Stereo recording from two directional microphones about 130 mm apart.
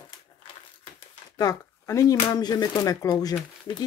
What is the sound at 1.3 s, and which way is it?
Speech, 30° left (ahead or behind).